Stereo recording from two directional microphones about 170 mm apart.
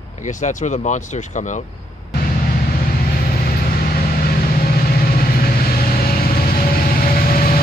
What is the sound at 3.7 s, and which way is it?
Vehicle, 60° left (ahead or behind).